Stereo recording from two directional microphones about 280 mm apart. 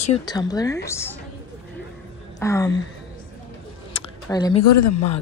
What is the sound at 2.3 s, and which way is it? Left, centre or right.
Speech, centre.